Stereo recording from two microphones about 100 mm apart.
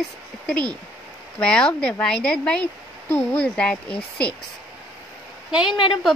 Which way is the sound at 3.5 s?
10° left (ahead or behind).